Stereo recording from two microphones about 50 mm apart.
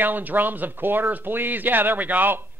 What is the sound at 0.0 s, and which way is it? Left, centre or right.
Speech, right.